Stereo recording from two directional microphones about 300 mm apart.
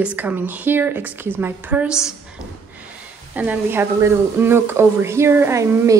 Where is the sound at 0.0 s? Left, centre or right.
Centre.